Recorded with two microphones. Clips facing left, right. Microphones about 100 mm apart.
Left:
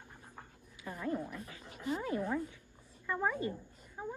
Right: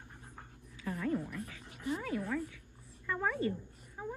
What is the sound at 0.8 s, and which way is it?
Speech, 20° left (ahead or behind).